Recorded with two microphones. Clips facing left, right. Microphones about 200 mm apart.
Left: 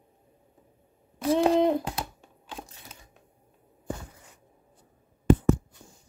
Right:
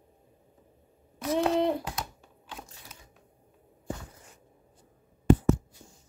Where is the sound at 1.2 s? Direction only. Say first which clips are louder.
Left 4 dB; 30° left (ahead or behind).